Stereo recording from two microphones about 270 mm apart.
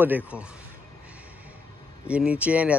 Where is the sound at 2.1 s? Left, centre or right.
Centre.